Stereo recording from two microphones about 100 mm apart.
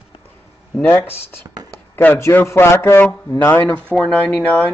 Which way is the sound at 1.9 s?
25° left (ahead or behind).